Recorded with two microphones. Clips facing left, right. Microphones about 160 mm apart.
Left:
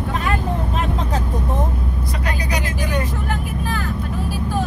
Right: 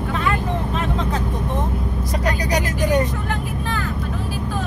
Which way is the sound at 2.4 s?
40° right (ahead or behind).